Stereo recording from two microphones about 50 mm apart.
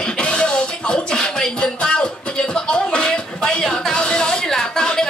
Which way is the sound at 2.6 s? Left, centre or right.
Centre.